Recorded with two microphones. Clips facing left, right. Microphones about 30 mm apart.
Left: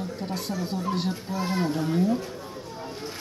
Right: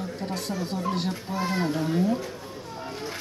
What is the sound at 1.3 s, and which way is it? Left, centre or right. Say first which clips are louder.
Speech: right 1 dB; right.